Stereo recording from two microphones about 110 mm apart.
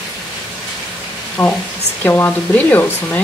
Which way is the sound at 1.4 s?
15° left (ahead or behind).